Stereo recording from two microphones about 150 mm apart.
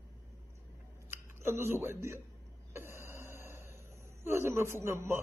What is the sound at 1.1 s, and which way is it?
Speech, 15° right (ahead or behind).